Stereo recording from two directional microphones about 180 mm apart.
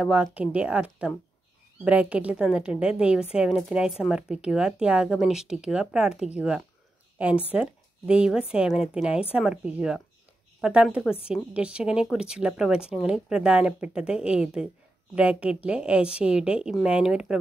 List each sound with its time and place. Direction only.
0.0 s a woman's voice: 5° right (ahead or behind)